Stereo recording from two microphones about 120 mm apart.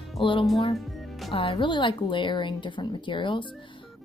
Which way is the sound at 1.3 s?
50° left (ahead or behind).